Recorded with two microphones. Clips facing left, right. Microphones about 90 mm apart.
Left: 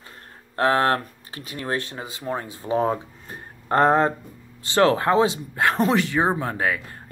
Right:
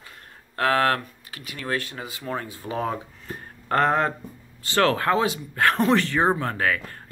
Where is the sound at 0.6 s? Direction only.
25° left (ahead or behind).